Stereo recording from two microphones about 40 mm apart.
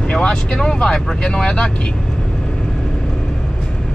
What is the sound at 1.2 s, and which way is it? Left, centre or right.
Speech, left.